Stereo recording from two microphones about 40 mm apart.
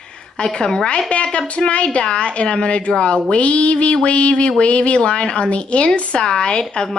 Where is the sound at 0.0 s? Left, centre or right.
Left.